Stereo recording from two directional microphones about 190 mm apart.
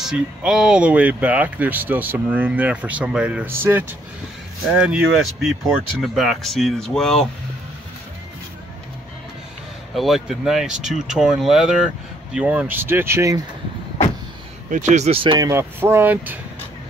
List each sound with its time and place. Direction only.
0.0 s speech: 5° right (ahead or behind)
4.8 s speech: 5° right (ahead or behind)
9.9 s speech: centre (ahead or behind)
14.7 s speech: 40° right (ahead or behind); by 16.3 s 10° right (ahead or behind)